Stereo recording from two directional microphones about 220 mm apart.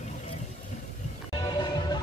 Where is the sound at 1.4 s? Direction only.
20° left (ahead or behind).